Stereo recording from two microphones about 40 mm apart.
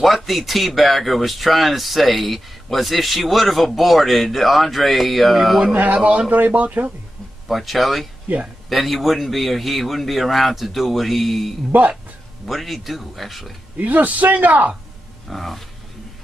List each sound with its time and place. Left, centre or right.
0.0 s speech: centre
5.7 s a man's voice: right
6.3 s a man's voice: right
7.4 s speech: centre
11.7 s a man's voice: right
12.4 s speech: centre
13.7 s a man's voice: right
15.2 s speech: centre